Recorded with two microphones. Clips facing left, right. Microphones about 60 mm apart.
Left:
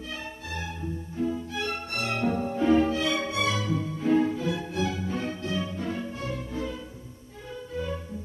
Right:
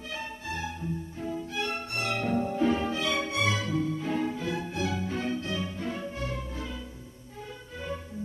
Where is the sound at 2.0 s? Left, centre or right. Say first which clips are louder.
Left 1 dB; left.